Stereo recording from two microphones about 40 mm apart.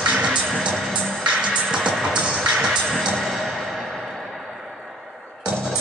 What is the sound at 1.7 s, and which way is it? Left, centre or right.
Music, right.